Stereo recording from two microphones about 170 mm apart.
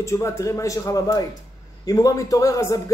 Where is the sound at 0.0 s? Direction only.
20° left (ahead or behind).